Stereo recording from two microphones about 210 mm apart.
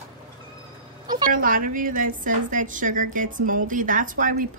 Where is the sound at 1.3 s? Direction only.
40° right (ahead or behind).